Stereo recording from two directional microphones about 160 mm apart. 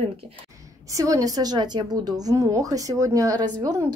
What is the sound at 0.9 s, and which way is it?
A woman's voice, 20° right (ahead or behind).